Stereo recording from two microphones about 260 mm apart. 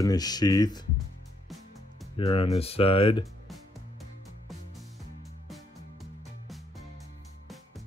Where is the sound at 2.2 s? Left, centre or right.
Left.